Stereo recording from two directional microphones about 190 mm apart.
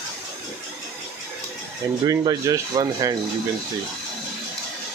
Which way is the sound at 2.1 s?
20° right (ahead or behind).